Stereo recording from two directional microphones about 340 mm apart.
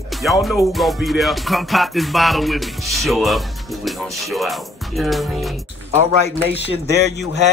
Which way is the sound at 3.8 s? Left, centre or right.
Centre.